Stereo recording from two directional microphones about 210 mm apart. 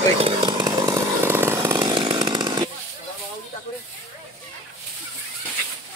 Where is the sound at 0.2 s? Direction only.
20° right (ahead or behind).